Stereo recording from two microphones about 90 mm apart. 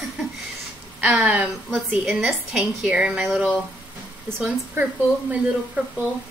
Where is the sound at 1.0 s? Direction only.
10° right (ahead or behind).